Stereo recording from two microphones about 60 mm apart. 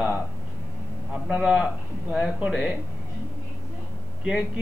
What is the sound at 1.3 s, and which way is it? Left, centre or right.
Speech, centre.